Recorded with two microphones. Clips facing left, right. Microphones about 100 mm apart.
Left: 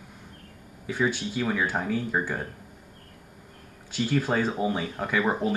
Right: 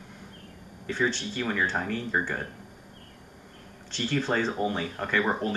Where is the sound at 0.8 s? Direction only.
10° left (ahead or behind).